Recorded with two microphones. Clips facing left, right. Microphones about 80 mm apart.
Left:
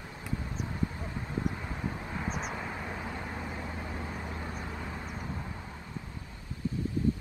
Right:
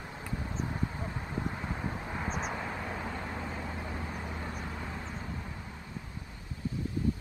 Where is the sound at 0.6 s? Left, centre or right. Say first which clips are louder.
Even; centre.